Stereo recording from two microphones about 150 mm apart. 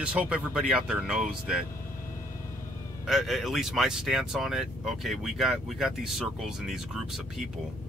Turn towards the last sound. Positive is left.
turn(degrees=0)  # may be behind; listen again after turning